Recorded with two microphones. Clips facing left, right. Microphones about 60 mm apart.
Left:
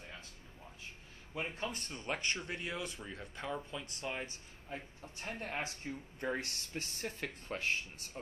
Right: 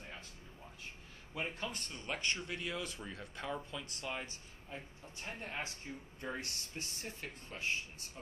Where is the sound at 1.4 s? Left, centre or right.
Centre.